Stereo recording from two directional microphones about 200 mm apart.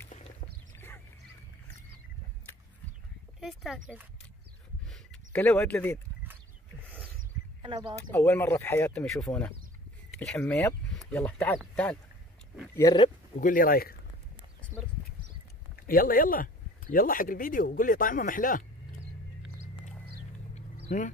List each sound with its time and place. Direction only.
0.7 s a sound: 10° left (ahead or behind)
3.3 s speech: centre (ahead or behind)
4.8 s a sound: 5° left (ahead or behind)
7.6 s speech: 25° right (ahead or behind)
8.1 s speech: 10° left (ahead or behind)
12.7 s speech: 20° left (ahead or behind)
13.4 s speech: 45° left (ahead or behind)
15.7 s speech: 45° left (ahead or behind)
20.5 s vehicle: 40° left (ahead or behind)